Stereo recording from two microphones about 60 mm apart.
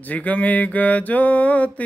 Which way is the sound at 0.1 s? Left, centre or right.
Left.